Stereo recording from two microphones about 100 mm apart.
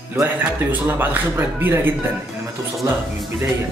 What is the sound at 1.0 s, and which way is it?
Speech, 20° right (ahead or behind).